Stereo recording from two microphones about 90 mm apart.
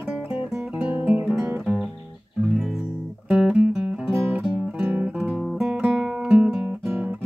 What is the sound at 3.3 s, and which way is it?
Music, 15° right (ahead or behind).